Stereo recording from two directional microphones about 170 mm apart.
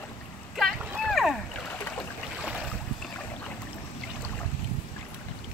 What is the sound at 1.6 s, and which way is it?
Boat, 15° left (ahead or behind).